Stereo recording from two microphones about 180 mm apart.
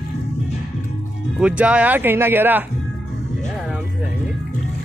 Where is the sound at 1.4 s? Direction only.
5° right (ahead or behind).